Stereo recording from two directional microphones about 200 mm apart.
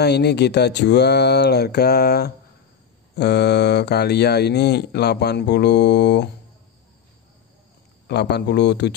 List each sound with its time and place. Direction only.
0.0 s speech: 55° left (ahead or behind)
8.1 s speech: 55° left (ahead or behind)